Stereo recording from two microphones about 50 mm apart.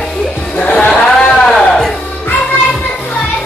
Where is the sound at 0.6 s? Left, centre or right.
Left.